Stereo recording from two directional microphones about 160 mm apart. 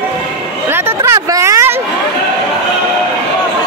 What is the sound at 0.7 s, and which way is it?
Chatter, 15° right (ahead or behind).